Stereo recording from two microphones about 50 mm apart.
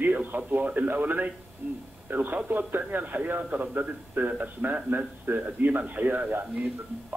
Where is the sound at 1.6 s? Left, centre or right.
Right.